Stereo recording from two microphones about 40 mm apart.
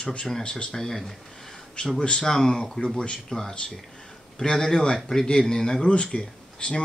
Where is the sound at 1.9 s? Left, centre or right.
Left.